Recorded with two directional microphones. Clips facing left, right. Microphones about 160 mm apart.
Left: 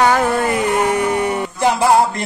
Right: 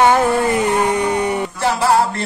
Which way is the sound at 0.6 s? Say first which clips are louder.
Even; 20° right (ahead or behind).